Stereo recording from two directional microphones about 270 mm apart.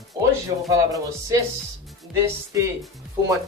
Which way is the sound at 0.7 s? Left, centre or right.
Centre.